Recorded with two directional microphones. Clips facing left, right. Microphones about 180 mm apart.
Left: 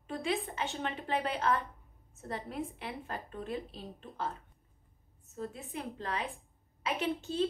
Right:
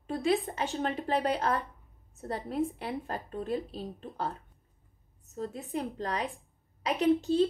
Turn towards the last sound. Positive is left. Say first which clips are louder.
# right 8 dB
turn(degrees=-35)  # may be behind; listen again after turning